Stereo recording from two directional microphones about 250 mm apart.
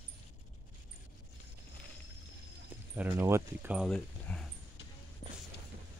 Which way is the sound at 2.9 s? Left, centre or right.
Centre.